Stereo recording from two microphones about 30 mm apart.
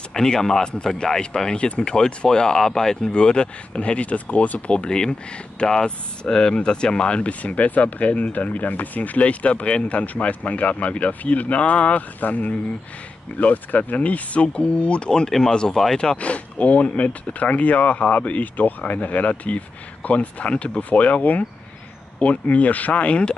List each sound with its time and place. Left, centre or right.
0.1 s speech: centre
3.0 s speech: left
4.8 s speech: left
5.6 s speech: left
7.2 s speech: left
9.2 s speech: left
9.7 s speech: left
9.9 s speech: left
15.2 s speech: centre
16.2 s speech: left